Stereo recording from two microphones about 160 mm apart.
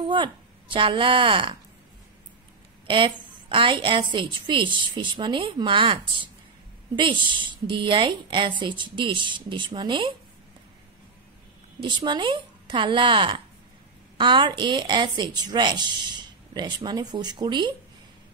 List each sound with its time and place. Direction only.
0.1 s a woman's voice: 30° right (ahead or behind)
2.9 s a woman's voice: 30° right (ahead or behind)
7.0 s a woman's voice: 30° right (ahead or behind)
11.8 s a woman's voice: 30° right (ahead or behind)